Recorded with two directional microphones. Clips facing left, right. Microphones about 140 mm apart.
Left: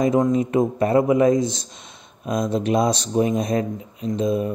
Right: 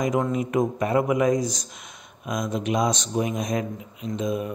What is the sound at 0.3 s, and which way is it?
A man's voice, 30° left (ahead or behind).